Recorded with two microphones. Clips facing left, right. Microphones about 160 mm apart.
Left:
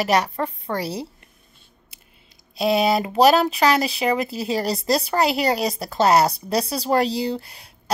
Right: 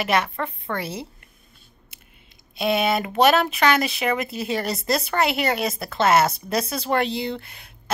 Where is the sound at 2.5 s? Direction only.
30° left (ahead or behind).